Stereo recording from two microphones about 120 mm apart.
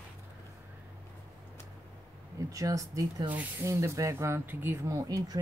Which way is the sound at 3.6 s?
25° right (ahead or behind).